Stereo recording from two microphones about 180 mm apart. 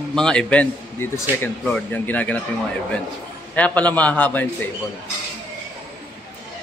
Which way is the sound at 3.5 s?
10° left (ahead or behind).